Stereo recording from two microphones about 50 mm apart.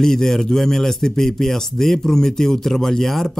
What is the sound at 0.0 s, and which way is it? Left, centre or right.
A man's voice, centre.